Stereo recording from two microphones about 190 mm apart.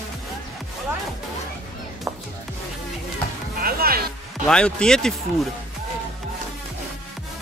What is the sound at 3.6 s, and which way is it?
Music, 50° right (ahead or behind).